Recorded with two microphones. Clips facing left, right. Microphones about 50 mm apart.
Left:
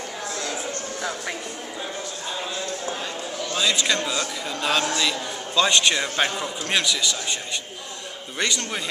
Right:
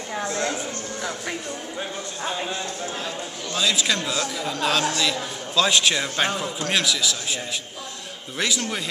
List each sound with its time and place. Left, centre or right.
0.3 s a sound: right
3.5 s a man's voice: centre
8.4 s a man's voice: centre